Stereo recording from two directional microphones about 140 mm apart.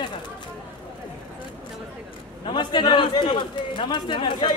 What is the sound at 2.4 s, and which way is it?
A man's voice, 30° left (ahead or behind).